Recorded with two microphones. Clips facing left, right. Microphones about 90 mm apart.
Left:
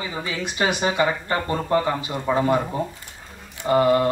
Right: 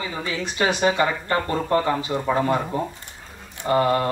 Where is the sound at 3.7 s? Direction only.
10° left (ahead or behind).